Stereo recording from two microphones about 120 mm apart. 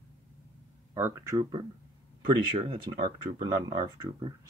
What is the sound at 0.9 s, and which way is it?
Speech, 20° right (ahead or behind).